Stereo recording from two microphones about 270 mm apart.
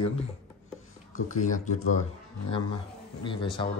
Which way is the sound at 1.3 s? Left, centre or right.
Left.